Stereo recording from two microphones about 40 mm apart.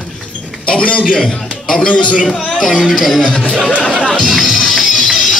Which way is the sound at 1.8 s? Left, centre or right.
Left.